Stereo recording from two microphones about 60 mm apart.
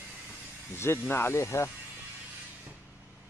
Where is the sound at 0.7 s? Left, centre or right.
Left.